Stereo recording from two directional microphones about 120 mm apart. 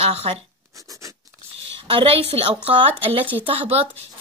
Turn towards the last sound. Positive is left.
turn(degrees=-50)  # may be behind; listen again after turning